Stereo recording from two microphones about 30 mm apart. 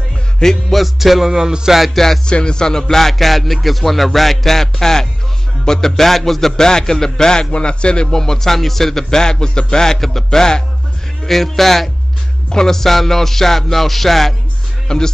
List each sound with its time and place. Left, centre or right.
0.4 s music: centre
0.7 s music: centre
2.2 s a man's voice: left
2.9 s music: centre
7.5 s a man's voice: left
8.2 s a man's voice: centre
9.9 s music: centre
11.2 s music: centre
12.4 s music: left
14.9 s a man's voice: left